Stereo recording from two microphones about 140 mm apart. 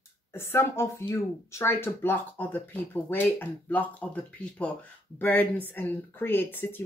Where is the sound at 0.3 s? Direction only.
15° left (ahead or behind).